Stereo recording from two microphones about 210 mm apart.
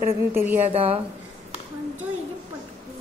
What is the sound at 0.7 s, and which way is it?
Speech, 25° right (ahead or behind).